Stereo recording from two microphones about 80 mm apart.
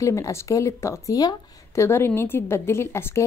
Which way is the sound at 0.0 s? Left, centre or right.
Left.